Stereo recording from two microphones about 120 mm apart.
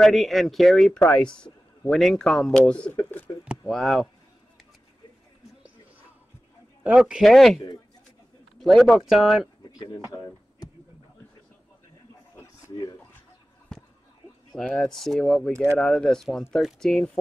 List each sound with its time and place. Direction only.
0.0 s speech: centre (ahead or behind)
0.9 s speech: 10° left (ahead or behind)
3.6 s speech: centre (ahead or behind)
6.8 s speech: 10° right (ahead or behind)
9.6 s a sound: 35° left (ahead or behind)
14.6 s speech: 5° left (ahead or behind)